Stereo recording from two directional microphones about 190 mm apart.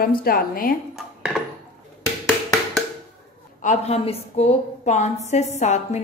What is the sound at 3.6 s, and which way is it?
A woman's voice, 35° left (ahead or behind).